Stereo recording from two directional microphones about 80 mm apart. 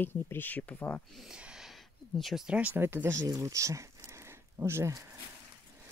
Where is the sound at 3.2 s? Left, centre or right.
Right.